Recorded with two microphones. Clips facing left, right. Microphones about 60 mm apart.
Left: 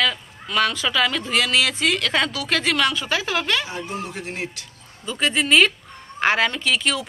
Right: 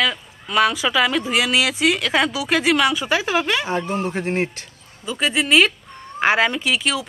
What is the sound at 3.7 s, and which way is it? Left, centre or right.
Speech, right.